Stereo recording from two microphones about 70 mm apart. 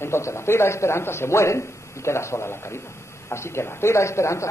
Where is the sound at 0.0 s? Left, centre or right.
Left.